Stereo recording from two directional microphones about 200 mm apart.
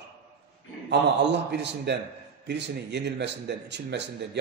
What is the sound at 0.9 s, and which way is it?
Speech, 60° right (ahead or behind).